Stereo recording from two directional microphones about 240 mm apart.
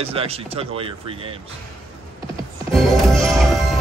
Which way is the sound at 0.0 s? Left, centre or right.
Right.